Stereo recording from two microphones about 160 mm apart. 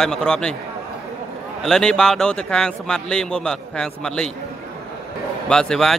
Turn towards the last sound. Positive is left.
turn(degrees=5)  # may be behind; listen again after turning